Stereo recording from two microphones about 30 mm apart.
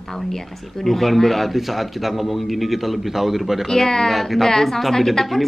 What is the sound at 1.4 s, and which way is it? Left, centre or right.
A man's voice, centre.